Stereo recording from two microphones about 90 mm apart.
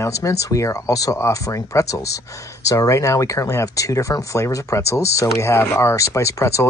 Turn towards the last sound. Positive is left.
turn(degrees=35)  # may be behind; listen again after turning